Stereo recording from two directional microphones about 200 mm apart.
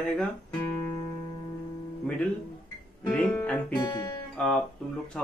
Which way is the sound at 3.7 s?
20° left (ahead or behind).